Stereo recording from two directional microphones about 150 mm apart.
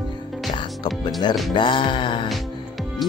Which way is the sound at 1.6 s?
35° left (ahead or behind).